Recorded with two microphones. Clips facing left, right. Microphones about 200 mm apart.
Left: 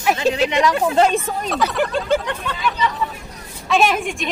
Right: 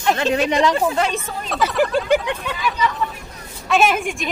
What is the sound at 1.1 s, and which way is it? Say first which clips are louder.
Speech: left 5 dB; 50° left (ahead or behind).